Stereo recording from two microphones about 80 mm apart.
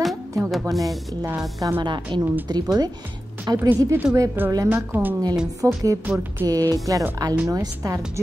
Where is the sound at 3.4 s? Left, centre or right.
Right.